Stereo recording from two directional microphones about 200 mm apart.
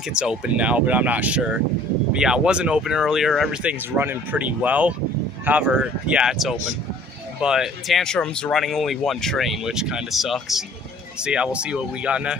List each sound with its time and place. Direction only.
0.1 s speech: 5° right (ahead or behind)